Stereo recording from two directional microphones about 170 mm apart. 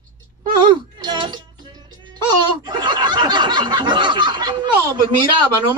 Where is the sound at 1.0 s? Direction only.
25° right (ahead or behind).